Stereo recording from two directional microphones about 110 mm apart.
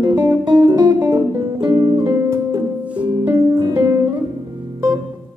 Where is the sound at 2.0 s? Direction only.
20° right (ahead or behind).